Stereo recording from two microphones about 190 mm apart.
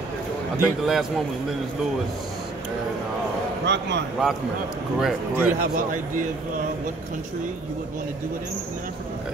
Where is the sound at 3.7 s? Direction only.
65° right (ahead or behind).